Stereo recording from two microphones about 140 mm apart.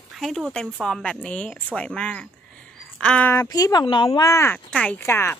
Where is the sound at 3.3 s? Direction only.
25° left (ahead or behind).